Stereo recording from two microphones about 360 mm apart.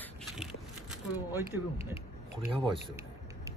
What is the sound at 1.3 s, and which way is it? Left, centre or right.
A man's voice, centre.